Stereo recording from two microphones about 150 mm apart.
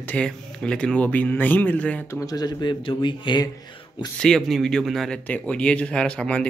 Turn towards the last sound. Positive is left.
turn(degrees=10)  # may be behind; listen again after turning